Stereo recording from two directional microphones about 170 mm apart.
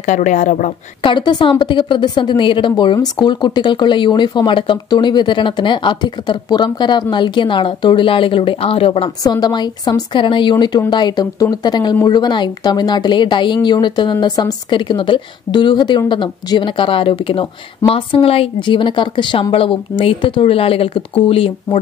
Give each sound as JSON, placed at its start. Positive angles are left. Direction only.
{"t": 0.0, "sound": "a woman's voice", "side_deg": 45}
{"t": 1.0, "sound": "a woman's voice", "side_deg": 30}